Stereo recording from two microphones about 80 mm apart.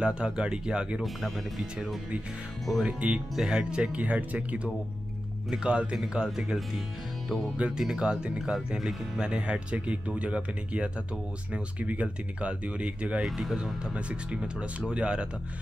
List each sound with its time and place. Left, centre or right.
0.0 s speech: centre
2.8 s speech: centre
13.2 s speech: centre